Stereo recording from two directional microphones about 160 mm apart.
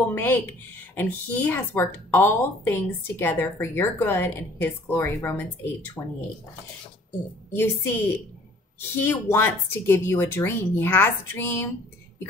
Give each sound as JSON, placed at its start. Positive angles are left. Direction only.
{"t": 0.1, "sound": "speech", "side_deg": 15}
{"t": 7.5, "sound": "speech", "side_deg": 15}